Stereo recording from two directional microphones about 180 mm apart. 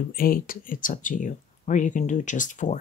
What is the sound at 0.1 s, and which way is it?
Speech, 55° left (ahead or behind).